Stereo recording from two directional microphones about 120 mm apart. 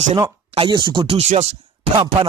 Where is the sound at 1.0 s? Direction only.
55° right (ahead or behind).